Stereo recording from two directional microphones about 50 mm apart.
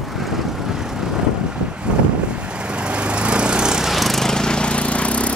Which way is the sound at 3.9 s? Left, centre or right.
Centre.